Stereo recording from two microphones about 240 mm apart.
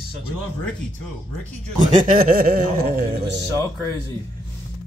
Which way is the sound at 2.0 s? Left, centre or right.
Right.